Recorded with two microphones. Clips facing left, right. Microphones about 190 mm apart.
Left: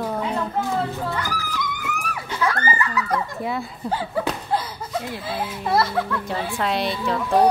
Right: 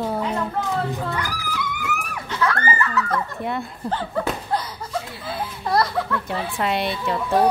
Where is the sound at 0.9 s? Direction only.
15° right (ahead or behind).